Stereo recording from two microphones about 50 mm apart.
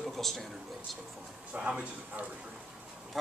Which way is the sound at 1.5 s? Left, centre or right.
Right.